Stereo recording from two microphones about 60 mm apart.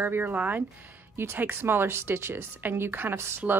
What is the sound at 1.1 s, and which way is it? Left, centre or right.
Speech, right.